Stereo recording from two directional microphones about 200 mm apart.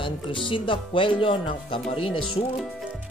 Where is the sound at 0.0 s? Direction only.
25° left (ahead or behind).